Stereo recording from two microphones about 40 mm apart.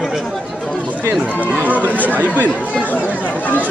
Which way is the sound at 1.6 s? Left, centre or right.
Right.